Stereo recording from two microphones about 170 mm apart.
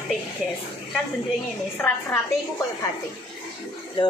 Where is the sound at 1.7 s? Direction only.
10° left (ahead or behind).